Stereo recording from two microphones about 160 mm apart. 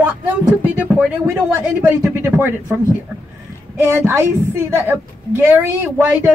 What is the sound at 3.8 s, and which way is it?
A woman's voice, 15° right (ahead or behind).